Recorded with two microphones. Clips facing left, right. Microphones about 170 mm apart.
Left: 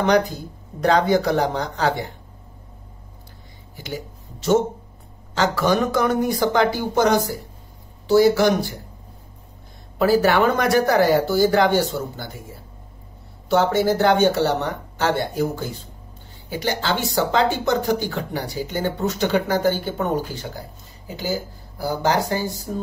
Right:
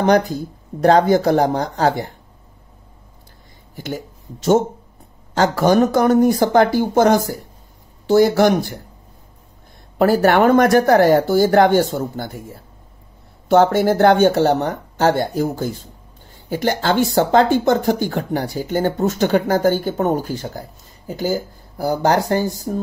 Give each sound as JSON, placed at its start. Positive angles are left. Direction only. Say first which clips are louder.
{"t": 0.8, "sound": "speech", "louder": "right 5 dB", "side_deg": -45}
{"t": 3.7, "sound": "speech", "louder": "right 4 dB", "side_deg": -50}
{"t": 9.9, "sound": "speech", "louder": "right 3 dB", "side_deg": -55}
{"t": 13.5, "sound": "speech", "louder": "right 4 dB", "side_deg": -55}
{"t": 16.4, "sound": "speech", "louder": "right 5 dB", "side_deg": -50}